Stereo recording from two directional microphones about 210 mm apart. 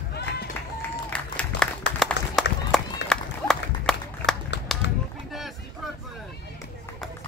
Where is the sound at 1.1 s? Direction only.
5° left (ahead or behind).